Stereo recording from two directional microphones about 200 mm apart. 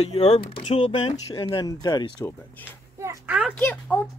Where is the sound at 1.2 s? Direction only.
15° left (ahead or behind).